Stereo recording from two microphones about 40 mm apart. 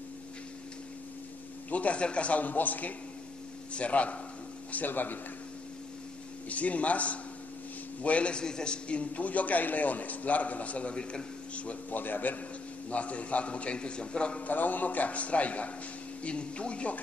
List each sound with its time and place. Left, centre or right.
1.7 s a man's voice: left
3.7 s a man's voice: left
4.7 s a man's voice: left
6.5 s a man's voice: left
12.0 s a man's voice: left
12.9 s a man's voice: left
14.4 s a man's voice: left